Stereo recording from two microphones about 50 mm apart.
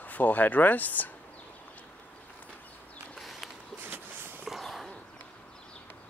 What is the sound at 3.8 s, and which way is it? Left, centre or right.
Walk, right.